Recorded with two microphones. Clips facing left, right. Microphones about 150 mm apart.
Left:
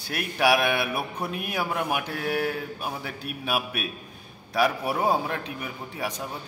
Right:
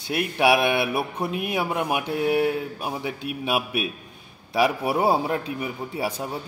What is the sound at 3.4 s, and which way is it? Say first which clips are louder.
Speech: right 3 dB; 20° right (ahead or behind).